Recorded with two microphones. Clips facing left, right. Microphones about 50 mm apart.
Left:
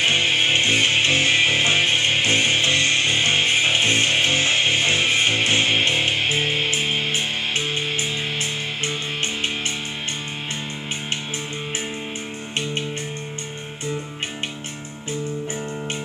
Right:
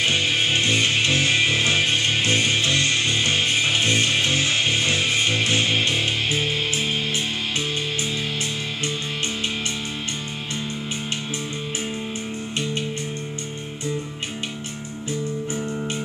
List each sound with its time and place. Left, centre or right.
0.0 s music: left